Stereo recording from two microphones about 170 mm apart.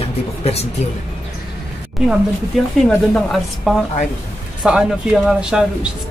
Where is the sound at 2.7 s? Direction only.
5° left (ahead or behind).